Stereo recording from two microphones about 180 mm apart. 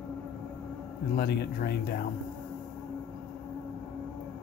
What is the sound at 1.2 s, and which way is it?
Speech, 60° left (ahead or behind).